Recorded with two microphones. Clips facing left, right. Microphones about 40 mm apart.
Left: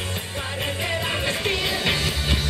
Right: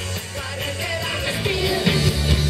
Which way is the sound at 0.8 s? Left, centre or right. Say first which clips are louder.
Even; left.